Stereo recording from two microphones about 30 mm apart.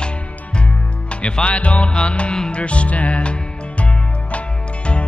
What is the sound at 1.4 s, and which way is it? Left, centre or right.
Music, left.